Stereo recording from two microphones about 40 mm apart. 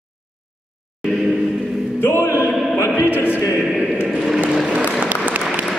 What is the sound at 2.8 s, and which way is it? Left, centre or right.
Opera, left.